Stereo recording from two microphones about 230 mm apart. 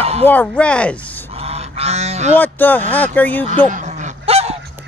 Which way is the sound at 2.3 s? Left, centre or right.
Centre.